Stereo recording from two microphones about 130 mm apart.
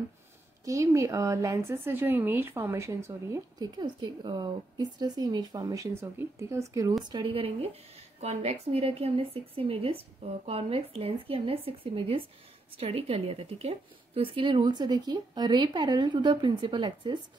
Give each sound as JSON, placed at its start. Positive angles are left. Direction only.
{"t": 0.7, "sound": "speech", "side_deg": -25}
{"t": 7.1, "sound": "a woman's voice", "side_deg": -40}
{"t": 8.2, "sound": "a woman's voice", "side_deg": -55}